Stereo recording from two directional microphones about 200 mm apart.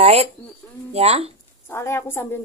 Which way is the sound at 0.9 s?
30° right (ahead or behind).